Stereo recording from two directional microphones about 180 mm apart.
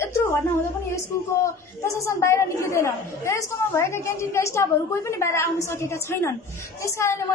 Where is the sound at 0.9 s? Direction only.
15° left (ahead or behind).